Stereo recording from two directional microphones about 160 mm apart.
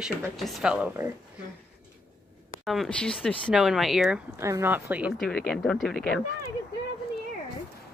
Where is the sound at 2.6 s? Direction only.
Centre (ahead or behind).